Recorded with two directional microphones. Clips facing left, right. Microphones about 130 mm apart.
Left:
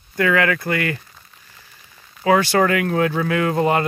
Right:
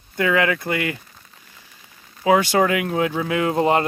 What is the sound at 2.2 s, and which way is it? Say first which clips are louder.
Speech: left 1 dB; 15° right (ahead or behind).